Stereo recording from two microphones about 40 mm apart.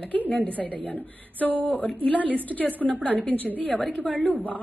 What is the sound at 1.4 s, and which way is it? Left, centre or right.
A woman's voice, left.